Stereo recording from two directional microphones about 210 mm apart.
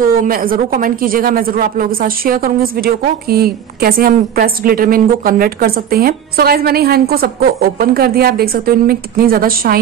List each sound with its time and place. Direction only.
0.0 s speech: 40° right (ahead or behind)